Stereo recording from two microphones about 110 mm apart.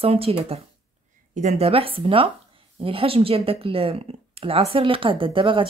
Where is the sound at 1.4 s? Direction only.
75° right (ahead or behind).